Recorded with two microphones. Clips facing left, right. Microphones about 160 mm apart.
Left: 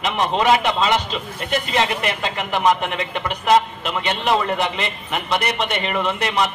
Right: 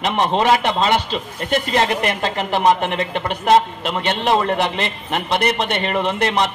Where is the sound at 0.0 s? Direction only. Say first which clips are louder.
Right 2 dB; 35° right (ahead or behind).